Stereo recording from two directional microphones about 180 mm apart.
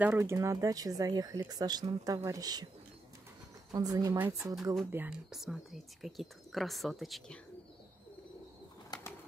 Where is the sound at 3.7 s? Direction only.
20° right (ahead or behind); by 7.4 s centre (ahead or behind).